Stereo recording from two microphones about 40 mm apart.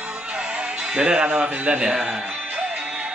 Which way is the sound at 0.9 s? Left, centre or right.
Right.